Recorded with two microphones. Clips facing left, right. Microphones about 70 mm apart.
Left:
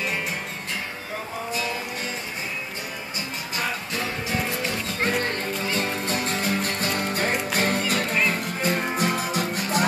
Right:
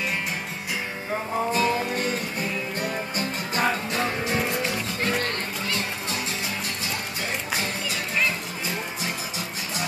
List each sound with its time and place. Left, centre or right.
3.2 s music: right
4.0 s music: centre
5.2 s music: left
6.0 s music: left